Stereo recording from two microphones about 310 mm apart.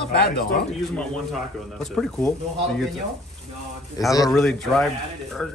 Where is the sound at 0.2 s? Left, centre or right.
Left.